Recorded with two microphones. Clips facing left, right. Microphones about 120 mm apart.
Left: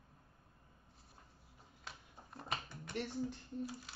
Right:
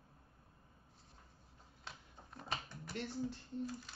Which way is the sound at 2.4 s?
Centre (ahead or behind).